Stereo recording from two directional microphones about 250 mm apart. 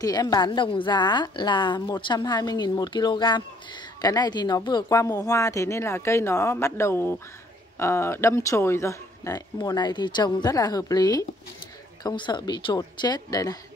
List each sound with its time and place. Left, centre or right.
0.0 s a woman's voice: centre